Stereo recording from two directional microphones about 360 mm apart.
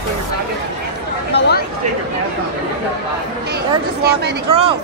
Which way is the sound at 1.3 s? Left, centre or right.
Left.